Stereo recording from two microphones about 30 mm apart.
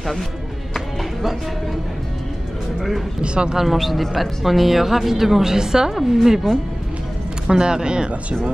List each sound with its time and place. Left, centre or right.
3.2 s a man's voice: right
3.6 s speech: centre
7.4 s speech: right